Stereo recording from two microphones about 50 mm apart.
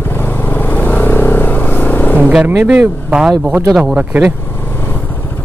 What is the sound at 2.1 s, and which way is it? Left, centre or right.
Vehicle, right.